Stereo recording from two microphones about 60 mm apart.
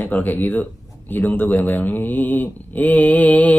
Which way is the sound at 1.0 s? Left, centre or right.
Left.